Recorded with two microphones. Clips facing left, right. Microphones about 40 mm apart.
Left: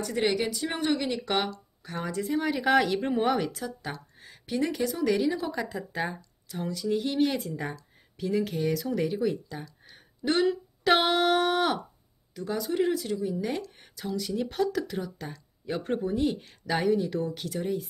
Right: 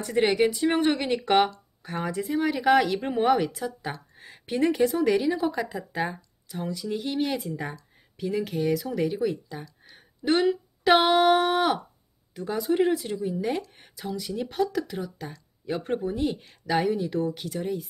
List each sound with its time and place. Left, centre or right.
0.0 s speech: right
1.9 s a woman's voice: centre
12.4 s a woman's voice: centre